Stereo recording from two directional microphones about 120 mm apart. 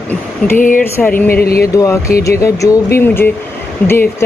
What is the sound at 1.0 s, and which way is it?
Speech, 15° left (ahead or behind).